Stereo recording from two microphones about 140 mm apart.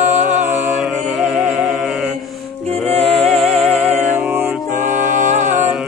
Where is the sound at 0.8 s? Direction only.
Centre (ahead or behind).